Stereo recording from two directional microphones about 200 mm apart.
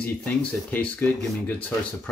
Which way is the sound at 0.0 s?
5° left (ahead or behind).